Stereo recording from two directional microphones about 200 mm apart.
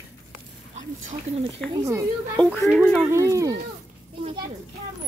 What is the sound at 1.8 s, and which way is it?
Speech, 15° right (ahead or behind).